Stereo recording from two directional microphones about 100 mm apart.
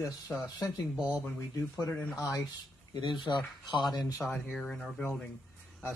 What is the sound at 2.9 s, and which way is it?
Speech, 50° left (ahead or behind).